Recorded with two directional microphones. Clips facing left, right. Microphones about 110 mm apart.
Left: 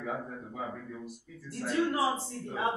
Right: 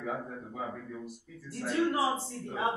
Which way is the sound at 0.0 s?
Centre (ahead or behind).